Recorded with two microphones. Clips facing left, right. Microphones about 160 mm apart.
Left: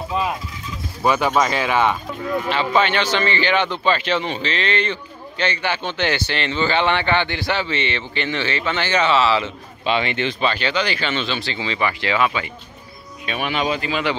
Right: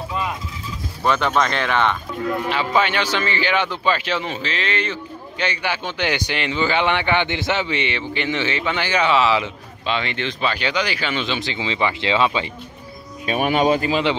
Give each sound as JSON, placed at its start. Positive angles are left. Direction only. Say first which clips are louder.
{"t": 1.0, "sound": "speech", "louder": "left 1 dB", "side_deg": 10}
{"t": 2.5, "sound": "a man's voice", "louder": "left 2 dB", "side_deg": -10}
{"t": 9.8, "sound": "speech", "louder": "left 3 dB", "side_deg": 5}
{"t": 10.4, "sound": "a man's voice", "louder": "even", "side_deg": -10}
{"t": 13.2, "sound": "speech", "louder": "right 5 dB", "side_deg": -40}